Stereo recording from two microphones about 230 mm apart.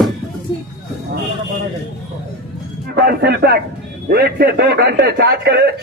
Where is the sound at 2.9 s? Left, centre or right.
Right.